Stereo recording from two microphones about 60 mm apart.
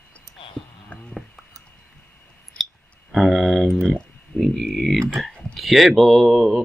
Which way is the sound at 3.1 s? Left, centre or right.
Centre.